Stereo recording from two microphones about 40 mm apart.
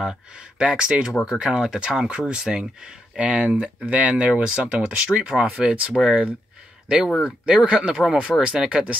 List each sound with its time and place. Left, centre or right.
0.0 s speech: right
3.2 s speech: right
4.1 s speech: right